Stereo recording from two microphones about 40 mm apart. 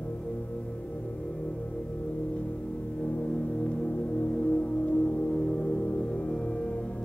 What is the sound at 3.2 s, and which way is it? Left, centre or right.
Music, left.